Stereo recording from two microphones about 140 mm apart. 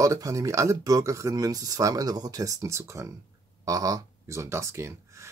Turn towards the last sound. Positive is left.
turn(degrees=-20)  # may be behind; listen again after turning